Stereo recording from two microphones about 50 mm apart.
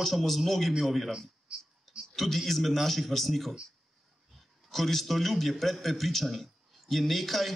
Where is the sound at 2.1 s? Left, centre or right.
Centre.